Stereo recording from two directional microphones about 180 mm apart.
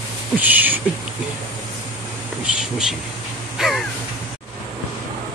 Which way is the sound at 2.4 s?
5° right (ahead or behind).